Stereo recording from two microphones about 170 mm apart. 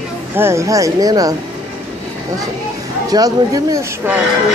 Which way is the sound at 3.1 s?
20° right (ahead or behind).